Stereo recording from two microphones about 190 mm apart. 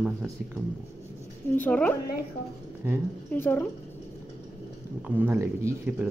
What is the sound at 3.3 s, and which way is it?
Speech, 10° left (ahead or behind).